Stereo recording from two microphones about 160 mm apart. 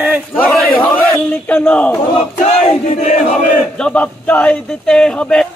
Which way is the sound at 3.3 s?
5° left (ahead or behind).